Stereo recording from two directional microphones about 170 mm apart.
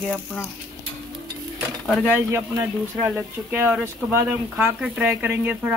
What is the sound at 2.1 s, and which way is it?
Speech, 10° right (ahead or behind).